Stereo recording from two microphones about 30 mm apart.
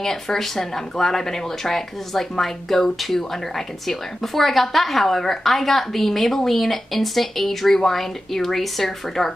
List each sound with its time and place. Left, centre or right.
0.0 s speech: centre